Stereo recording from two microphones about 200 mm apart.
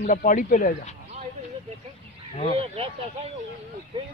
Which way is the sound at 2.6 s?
30° right (ahead or behind).